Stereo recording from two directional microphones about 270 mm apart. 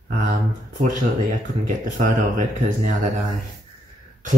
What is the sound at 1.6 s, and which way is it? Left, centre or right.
Speech, right.